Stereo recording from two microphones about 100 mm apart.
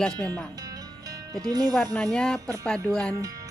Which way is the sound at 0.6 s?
40° right (ahead or behind).